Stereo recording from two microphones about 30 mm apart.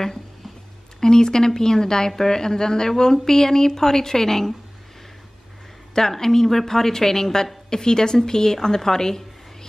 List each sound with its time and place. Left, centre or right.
1.0 s a woman's voice: left
5.9 s a woman's voice: centre